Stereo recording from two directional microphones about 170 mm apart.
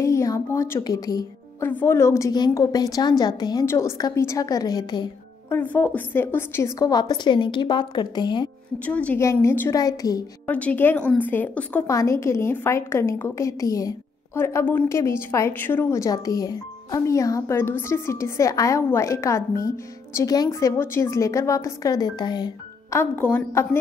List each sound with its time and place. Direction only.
0.0 s a woman's voice: 20° left (ahead or behind)
5.5 s a woman's voice: 10° left (ahead or behind); by 8.5 s 25° left (ahead or behind)
8.7 s a woman's voice: 10° left (ahead or behind)
10.4 s a woman's voice: 10° left (ahead or behind)